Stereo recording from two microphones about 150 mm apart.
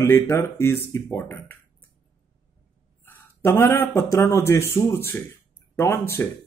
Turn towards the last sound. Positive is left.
turn(degrees=15)  # may be behind; listen again after turning